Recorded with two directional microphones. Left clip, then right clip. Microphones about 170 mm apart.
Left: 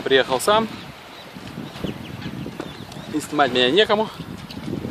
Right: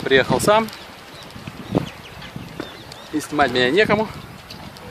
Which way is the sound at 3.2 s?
Centre (ahead or behind).